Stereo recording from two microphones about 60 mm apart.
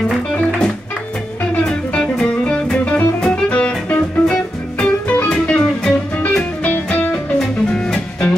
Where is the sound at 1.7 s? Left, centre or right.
Centre.